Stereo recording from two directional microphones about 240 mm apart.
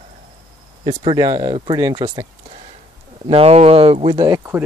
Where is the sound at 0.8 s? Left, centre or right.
Centre.